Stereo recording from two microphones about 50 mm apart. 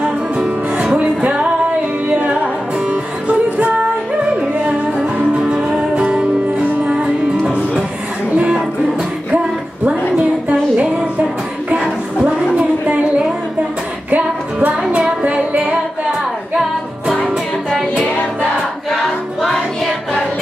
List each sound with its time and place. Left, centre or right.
0.4 s music: right
2.9 s music: right
9.8 s a sound: centre
14.1 s music: right
19.4 s music: centre